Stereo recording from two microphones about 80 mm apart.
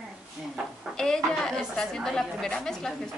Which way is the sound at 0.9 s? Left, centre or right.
Centre.